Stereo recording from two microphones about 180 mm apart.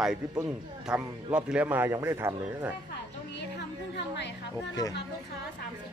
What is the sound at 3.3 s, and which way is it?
Music, 70° left (ahead or behind).